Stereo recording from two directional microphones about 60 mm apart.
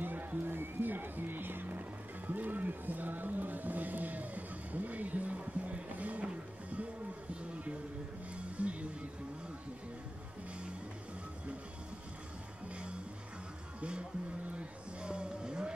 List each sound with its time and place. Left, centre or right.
0.0 s music: right
8.4 s music: right
13.7 s music: centre